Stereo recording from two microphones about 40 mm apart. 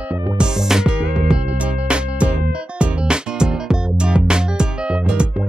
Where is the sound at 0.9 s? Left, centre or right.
Right.